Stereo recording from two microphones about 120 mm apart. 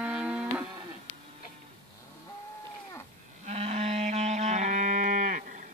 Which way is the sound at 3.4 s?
65° right (ahead or behind).